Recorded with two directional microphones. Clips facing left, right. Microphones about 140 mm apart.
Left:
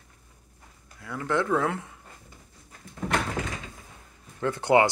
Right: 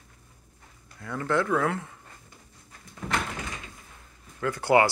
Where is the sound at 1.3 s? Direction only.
20° left (ahead or behind).